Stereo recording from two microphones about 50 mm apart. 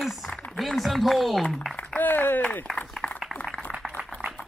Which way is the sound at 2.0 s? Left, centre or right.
Left.